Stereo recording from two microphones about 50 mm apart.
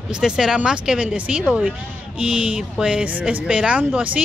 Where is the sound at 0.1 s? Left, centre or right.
Centre.